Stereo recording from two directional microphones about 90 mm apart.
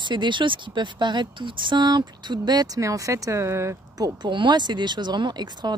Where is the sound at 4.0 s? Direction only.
60° right (ahead or behind).